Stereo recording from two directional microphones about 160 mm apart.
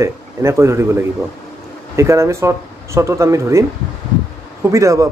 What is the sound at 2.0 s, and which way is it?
Music, 20° right (ahead or behind).